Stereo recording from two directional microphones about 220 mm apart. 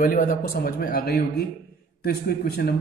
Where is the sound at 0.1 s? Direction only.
40° left (ahead or behind).